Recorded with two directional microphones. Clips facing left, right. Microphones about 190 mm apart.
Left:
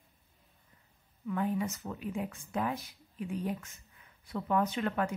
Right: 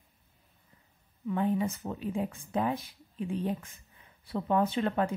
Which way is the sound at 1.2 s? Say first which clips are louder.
Right 3 dB; 25° right (ahead or behind).